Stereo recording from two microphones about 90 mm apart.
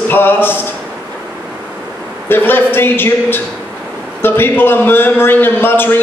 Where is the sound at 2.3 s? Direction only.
25° left (ahead or behind).